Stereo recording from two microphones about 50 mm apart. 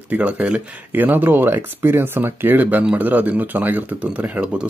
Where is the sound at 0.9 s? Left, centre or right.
Right.